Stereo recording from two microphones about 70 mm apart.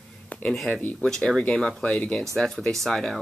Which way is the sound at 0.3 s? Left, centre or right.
Left.